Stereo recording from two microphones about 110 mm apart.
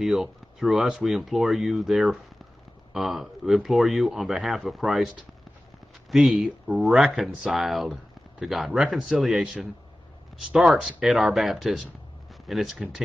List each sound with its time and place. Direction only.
0.0 s speech: centre (ahead or behind)